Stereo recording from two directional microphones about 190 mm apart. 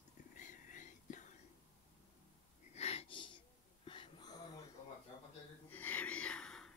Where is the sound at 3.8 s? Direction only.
25° left (ahead or behind).